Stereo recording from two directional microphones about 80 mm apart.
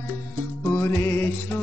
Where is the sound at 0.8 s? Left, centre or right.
Left.